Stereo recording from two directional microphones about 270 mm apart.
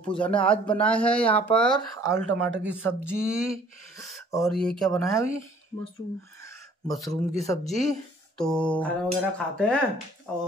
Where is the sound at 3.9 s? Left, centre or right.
Centre.